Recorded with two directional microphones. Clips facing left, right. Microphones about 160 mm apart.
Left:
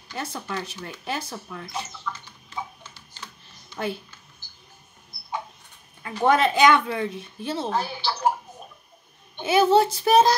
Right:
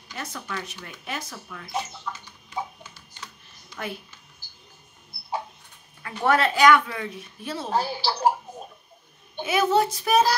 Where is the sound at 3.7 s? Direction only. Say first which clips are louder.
Left 5 dB; 30° left (ahead or behind).